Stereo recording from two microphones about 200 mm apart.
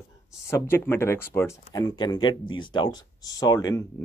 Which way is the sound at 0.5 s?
10° left (ahead or behind).